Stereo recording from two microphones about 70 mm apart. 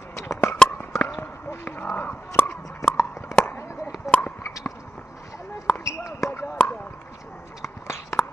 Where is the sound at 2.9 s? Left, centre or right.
Left.